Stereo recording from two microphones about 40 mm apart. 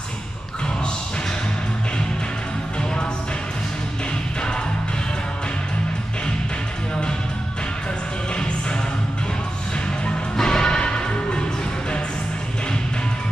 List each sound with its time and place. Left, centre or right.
8.4 s music: left
10.3 s music: centre